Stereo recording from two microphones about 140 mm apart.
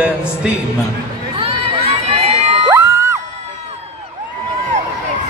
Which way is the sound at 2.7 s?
20° right (ahead or behind).